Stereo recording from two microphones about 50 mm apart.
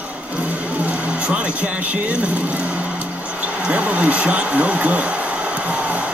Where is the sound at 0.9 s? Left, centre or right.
Right.